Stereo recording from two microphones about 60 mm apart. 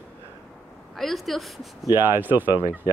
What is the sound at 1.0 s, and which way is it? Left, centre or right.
Speech, centre.